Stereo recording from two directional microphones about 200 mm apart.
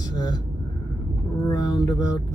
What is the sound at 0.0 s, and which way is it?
Vehicle, 20° left (ahead or behind).